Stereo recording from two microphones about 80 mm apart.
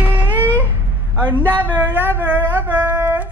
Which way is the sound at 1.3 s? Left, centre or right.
Right.